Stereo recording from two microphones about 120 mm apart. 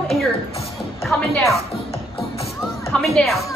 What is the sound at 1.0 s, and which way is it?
Speech, centre (ahead or behind).